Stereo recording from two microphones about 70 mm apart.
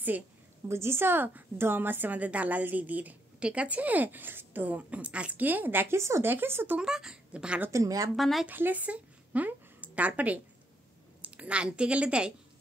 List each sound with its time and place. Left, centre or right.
0.7 s a woman's voice: right
6.8 s a woman's voice: centre
7.7 s speech: right
8.2 s speech: centre
8.5 s a woman's voice: right